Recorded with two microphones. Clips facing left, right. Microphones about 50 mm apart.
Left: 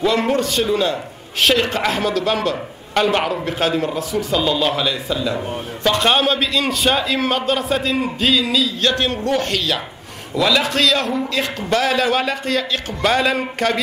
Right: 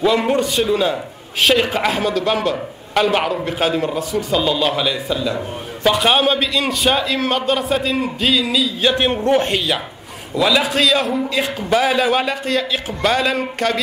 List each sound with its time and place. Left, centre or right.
0.0 s a man's voice: centre
8.9 s speech: right
10.3 s a man's voice: centre